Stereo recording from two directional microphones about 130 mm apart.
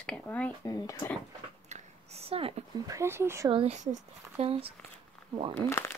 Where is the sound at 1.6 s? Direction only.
60° right (ahead or behind).